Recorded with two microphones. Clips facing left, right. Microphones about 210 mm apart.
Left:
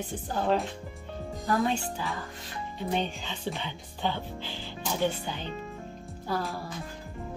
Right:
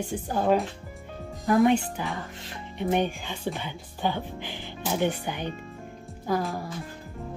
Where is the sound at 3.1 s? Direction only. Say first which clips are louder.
Right 3 dB; 10° right (ahead or behind).